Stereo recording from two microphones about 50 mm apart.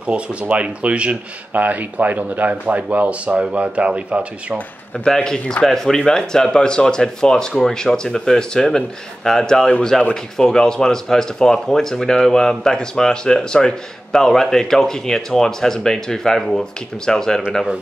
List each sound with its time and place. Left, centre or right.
0.0 s speech: right
1.5 s speech: right
4.9 s speech: centre